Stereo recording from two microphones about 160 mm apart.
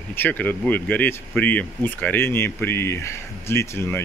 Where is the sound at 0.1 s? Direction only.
10° left (ahead or behind).